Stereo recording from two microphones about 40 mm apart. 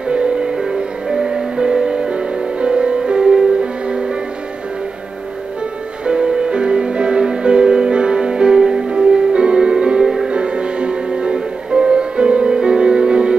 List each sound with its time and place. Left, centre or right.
0.1 s music: right
6.0 s music: right